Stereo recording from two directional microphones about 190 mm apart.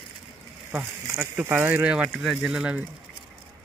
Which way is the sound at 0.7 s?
10° right (ahead or behind).